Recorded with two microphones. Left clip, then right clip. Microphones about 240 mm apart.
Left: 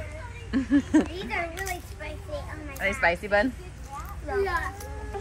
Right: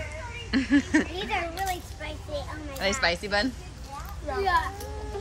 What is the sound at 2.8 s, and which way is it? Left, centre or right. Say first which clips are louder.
Speech: left 1 dB; centre.